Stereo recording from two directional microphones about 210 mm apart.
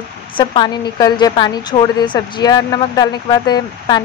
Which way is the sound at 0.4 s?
20° left (ahead or behind).